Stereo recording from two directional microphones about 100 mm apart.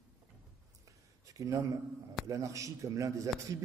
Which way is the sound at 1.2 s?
35° right (ahead or behind).